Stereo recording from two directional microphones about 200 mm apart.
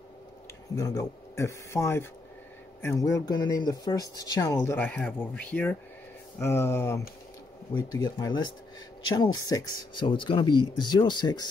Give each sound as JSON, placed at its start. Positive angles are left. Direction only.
{"t": 0.7, "sound": "speech", "side_deg": 15}